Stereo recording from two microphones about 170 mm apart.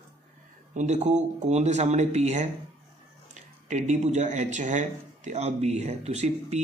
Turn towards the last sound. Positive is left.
turn(degrees=-40)  # may be behind; listen again after turning